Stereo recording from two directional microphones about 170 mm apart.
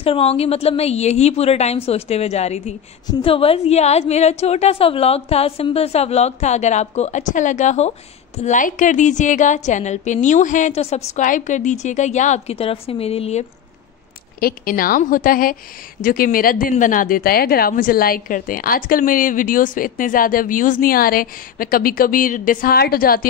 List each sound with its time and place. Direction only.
0.0 s a woman's voice: 35° left (ahead or behind)
14.4 s speech: 55° left (ahead or behind)